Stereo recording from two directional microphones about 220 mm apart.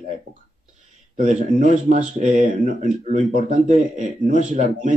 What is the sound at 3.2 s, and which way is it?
Speech, 35° left (ahead or behind).